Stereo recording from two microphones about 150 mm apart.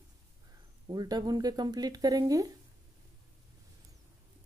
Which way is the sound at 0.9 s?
25° right (ahead or behind).